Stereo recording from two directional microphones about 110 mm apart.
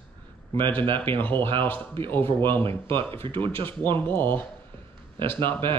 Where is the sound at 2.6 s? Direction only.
55° right (ahead or behind).